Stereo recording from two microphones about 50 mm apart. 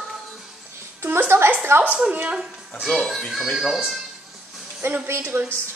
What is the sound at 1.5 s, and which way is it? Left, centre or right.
Speech, right.